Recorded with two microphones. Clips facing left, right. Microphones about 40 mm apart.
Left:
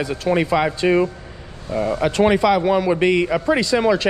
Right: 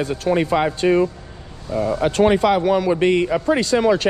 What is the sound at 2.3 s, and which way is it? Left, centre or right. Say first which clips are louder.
Speech: left 1 dB; left.